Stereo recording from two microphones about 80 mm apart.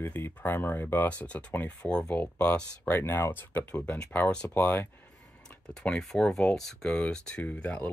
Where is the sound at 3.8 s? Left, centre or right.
Centre.